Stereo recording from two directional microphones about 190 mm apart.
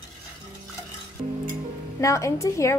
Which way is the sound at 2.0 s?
15° left (ahead or behind).